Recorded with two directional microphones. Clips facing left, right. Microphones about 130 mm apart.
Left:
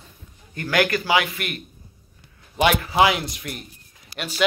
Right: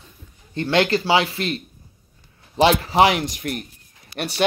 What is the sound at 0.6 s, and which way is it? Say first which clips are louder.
A man's voice: right 3 dB; 25° right (ahead or behind).